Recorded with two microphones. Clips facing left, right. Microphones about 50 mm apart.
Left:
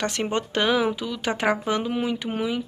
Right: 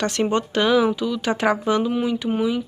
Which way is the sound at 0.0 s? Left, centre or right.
Left.